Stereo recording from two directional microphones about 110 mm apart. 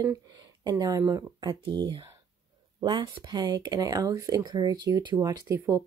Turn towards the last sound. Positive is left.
turn(degrees=-30)  # may be behind; listen again after turning